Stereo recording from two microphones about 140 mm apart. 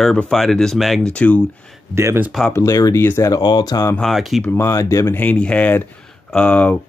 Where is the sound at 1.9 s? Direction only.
20° right (ahead or behind).